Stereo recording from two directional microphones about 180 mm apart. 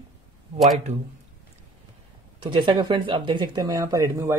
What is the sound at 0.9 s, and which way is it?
Speech, 40° right (ahead or behind).